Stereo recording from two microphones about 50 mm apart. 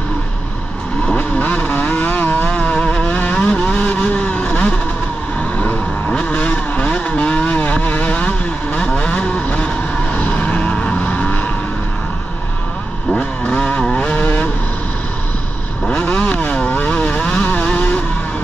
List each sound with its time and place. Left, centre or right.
1.0 s vehicle: left
6.0 s vehicle: left
13.6 s vehicle: left
13.9 s vehicle: left
15.9 s vehicle: left